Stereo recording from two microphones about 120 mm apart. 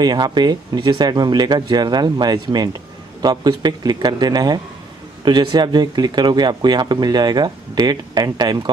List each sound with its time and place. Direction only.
0.0 s speech: 35° right (ahead or behind)